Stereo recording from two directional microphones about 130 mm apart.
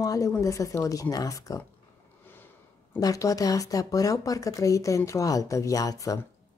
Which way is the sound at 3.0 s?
25° left (ahead or behind).